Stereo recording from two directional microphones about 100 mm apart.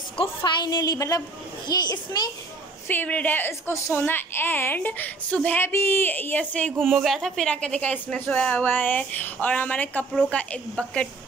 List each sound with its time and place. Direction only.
0.4 s a woman's voice: 50° left (ahead or behind)
2.9 s a child's voice: 15° left (ahead or behind)
6.8 s speech: centre (ahead or behind)